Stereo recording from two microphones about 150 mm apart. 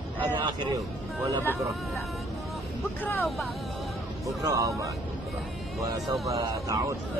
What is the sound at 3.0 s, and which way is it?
Speech, 10° left (ahead or behind).